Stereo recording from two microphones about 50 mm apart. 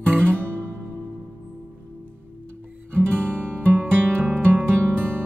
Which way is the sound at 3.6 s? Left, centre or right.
Right.